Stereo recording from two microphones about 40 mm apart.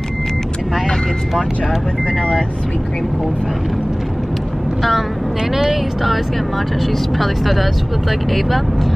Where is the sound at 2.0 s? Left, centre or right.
Left.